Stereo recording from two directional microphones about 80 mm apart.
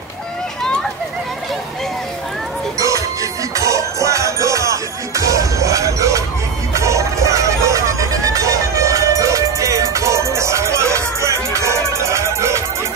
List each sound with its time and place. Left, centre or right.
2.8 s music: right